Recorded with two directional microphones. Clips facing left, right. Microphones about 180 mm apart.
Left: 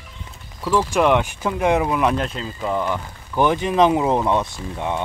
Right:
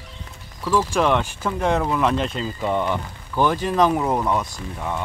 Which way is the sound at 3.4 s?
15° left (ahead or behind).